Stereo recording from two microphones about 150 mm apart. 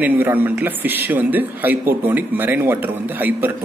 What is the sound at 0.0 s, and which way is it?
Speech, 15° right (ahead or behind).